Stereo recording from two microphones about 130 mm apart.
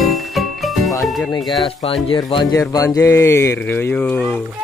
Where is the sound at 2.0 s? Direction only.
40° left (ahead or behind); by 4.4 s 10° left (ahead or behind).